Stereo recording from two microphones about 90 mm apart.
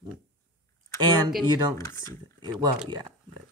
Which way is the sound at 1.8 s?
40° left (ahead or behind).